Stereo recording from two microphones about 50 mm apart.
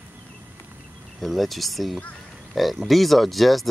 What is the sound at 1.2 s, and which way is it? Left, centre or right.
Speech, centre.